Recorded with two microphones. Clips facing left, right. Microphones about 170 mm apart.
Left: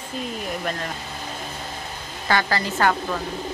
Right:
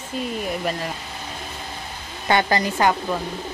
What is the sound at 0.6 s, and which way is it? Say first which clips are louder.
Speech: right 2 dB; 5° right (ahead or behind).